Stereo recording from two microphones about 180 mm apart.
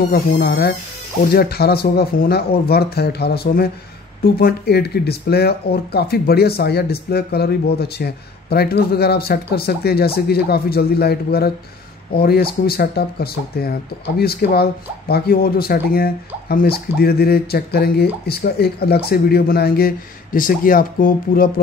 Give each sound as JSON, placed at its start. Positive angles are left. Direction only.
{"t": 0.1, "sound": "speech", "side_deg": 60}